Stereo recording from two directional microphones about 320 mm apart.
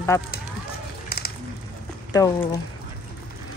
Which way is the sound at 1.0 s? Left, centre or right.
Left.